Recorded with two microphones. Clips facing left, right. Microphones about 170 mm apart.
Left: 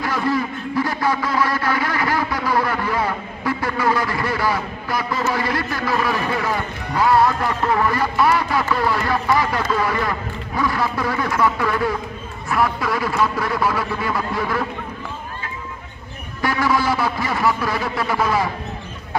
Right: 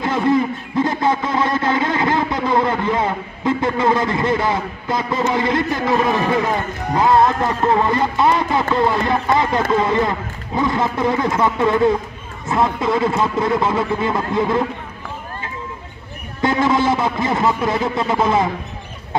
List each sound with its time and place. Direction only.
0.0 s a sound: 20° right (ahead or behind)
7.0 s speech: 20° right (ahead or behind)
16.3 s speech: 20° right (ahead or behind)